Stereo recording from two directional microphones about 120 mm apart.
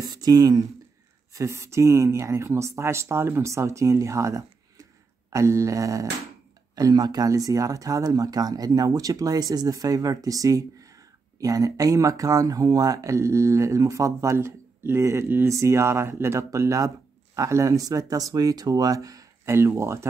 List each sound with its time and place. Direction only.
0.0 s speech: 35° right (ahead or behind)